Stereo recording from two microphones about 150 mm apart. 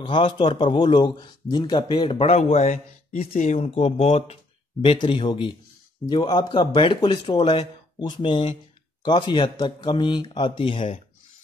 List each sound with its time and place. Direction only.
0.0 s speech: 30° left (ahead or behind)